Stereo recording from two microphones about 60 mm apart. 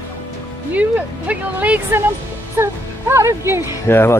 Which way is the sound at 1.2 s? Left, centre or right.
Right.